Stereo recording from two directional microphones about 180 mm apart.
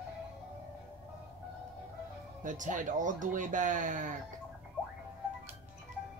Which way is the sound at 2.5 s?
45° right (ahead or behind).